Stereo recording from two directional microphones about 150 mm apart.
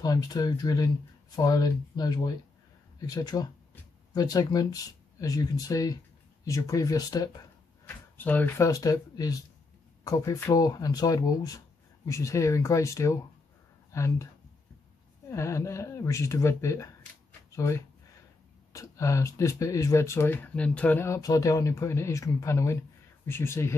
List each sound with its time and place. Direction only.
0.0 s speech: 25° left (ahead or behind)
7.8 s speech: 10° left (ahead or behind)
15.3 s speech: 20° left (ahead or behind)